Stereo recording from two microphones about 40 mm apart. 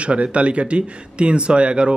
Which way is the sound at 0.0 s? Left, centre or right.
Right.